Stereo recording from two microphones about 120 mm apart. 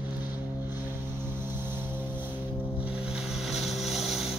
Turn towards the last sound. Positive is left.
turn(degrees=0)  # may be behind; listen again after turning